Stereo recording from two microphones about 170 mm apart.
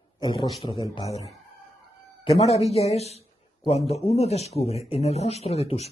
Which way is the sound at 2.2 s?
40° left (ahead or behind).